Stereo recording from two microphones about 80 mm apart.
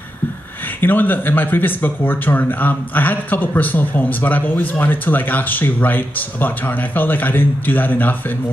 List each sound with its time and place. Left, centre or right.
0.7 s speech: left